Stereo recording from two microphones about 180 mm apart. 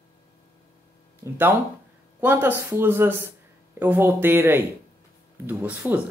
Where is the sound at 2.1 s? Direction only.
10° right (ahead or behind).